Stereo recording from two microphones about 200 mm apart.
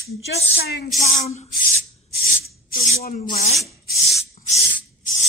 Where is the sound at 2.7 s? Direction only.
35° left (ahead or behind).